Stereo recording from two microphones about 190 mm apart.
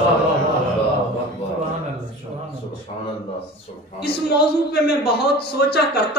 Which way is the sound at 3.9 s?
60° left (ahead or behind).